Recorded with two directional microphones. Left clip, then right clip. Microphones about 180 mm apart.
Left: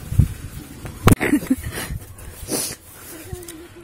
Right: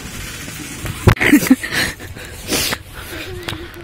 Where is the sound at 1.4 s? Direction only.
Centre (ahead or behind).